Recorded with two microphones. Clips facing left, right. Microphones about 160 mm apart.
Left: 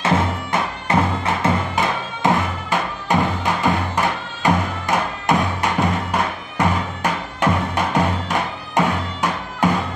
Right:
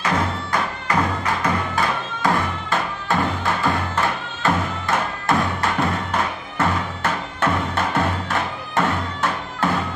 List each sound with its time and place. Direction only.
0.0 s music: 25° left (ahead or behind)